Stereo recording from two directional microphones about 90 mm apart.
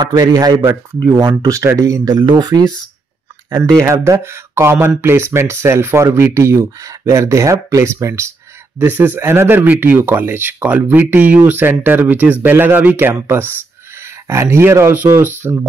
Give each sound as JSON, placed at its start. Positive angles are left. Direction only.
{"t": 0.0, "sound": "speech", "side_deg": -50}
{"t": 1.4, "sound": "speech", "side_deg": -35}
{"t": 2.1, "sound": "speech", "side_deg": -55}
{"t": 3.5, "sound": "speech", "side_deg": -30}
{"t": 8.7, "sound": "speech", "side_deg": -20}